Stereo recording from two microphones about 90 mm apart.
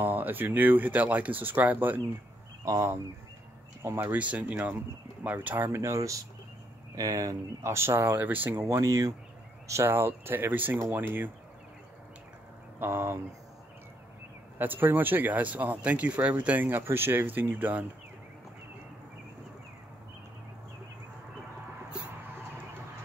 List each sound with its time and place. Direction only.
0.0 s speech: 20° right (ahead or behind)
2.6 s speech: 35° right (ahead or behind); by 5.7 s 20° right (ahead or behind)
5.7 s speech: 30° right (ahead or behind)
12.7 s speech: 25° right (ahead or behind)
14.6 s speech: 20° right (ahead or behind)